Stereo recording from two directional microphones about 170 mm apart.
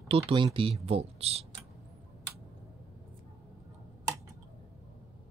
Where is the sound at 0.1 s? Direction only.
30° right (ahead or behind).